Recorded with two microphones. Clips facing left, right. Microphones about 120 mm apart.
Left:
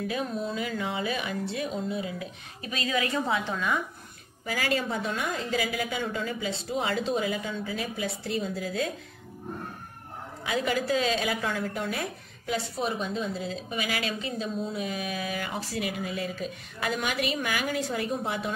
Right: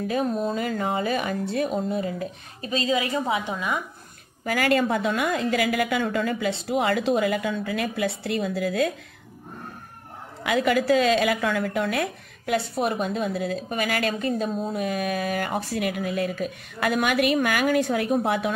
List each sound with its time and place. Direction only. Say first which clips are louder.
0.1 s speech: right 6 dB; 45° right (ahead or behind)
2.9 s a woman's voice: right 2 dB; 15° right (ahead or behind)
4.5 s a woman's voice: right 7 dB; 60° right (ahead or behind); by 8.9 s 75° right (ahead or behind)
10.4 s a woman's voice: right 6 dB; 75° right (ahead or behind); by 18.5 s 60° right (ahead or behind)